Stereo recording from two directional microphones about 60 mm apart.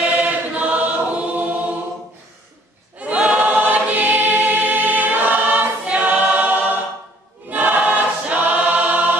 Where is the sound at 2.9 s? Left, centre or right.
Right.